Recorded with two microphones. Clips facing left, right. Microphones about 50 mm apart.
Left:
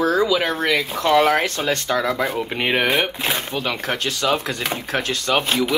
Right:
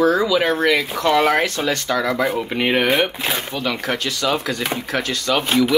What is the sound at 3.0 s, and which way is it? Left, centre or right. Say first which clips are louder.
Speech: right 1 dB; left.